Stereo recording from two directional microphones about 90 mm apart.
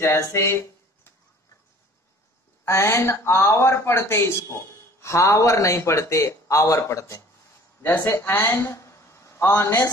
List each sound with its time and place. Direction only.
0.0 s a man's voice: 35° left (ahead or behind)
2.6 s a man's voice: 30° left (ahead or behind)
7.8 s a man's voice: 25° left (ahead or behind)